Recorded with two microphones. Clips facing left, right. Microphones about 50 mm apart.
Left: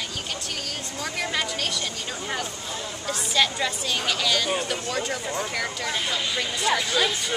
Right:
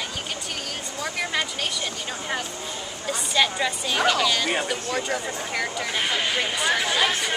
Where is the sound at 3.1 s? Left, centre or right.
Centre.